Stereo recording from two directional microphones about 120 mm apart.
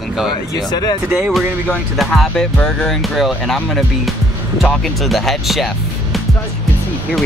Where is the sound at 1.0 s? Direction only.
15° right (ahead or behind).